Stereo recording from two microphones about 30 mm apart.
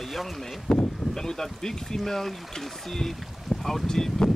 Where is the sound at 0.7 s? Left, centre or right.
Left; by 3.2 s centre.